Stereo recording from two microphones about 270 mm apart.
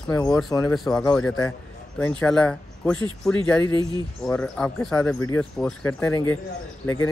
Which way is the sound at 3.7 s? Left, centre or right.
Centre.